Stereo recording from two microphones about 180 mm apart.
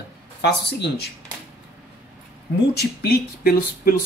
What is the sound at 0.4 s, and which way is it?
Speech, 70° left (ahead or behind).